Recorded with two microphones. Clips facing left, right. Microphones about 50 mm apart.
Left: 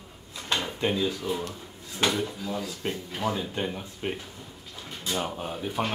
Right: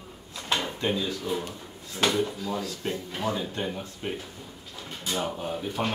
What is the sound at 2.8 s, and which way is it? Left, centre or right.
Speech, left.